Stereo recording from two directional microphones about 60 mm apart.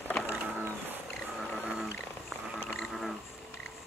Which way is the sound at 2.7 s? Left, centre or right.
Centre.